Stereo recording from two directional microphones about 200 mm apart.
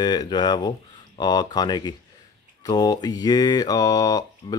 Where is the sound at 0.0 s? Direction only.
20° left (ahead or behind).